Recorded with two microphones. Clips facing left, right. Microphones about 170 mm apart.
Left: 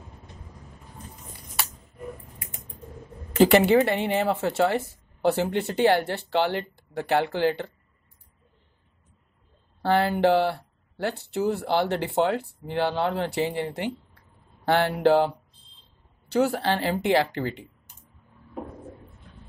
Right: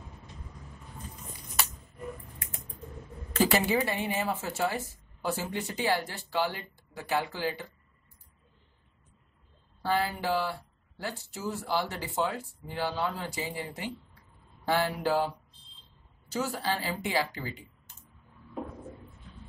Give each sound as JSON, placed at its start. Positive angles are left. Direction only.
{"t": 3.8, "sound": "speech", "side_deg": 65}
{"t": 9.8, "sound": "speech", "side_deg": 65}